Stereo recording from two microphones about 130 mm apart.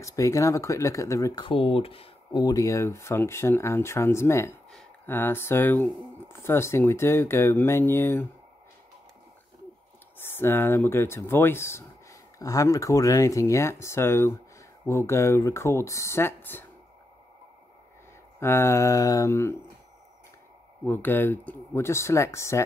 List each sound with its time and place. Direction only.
0.0 s speech: 25° left (ahead or behind)
1.3 s speech: 40° left (ahead or behind)
2.3 s speech: 30° left (ahead or behind)
10.1 s speech: 15° left (ahead or behind)
18.4 s speech: 20° left (ahead or behind)
20.8 s speech: 15° left (ahead or behind)